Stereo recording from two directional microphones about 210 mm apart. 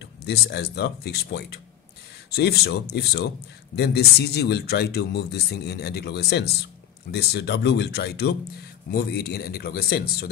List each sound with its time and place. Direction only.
0.0 s speech: 50° left (ahead or behind)